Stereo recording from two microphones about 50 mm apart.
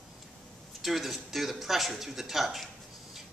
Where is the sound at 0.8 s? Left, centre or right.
Centre.